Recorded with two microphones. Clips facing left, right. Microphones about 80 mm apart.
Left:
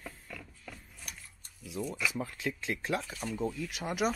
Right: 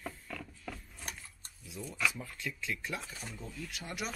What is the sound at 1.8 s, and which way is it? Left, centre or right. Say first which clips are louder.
Speech: left 2 dB; left.